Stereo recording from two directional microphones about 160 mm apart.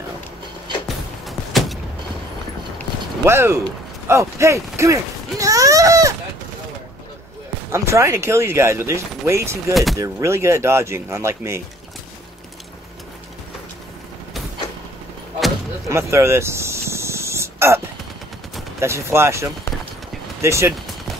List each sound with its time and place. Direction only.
0.8 s music: centre (ahead or behind)
3.3 s speech: 15° right (ahead or behind)
5.4 s a sound: 20° right (ahead or behind)
7.7 s speech: 15° right (ahead or behind)
15.9 s a sound: 15° right (ahead or behind)
18.8 s speech: 15° right (ahead or behind)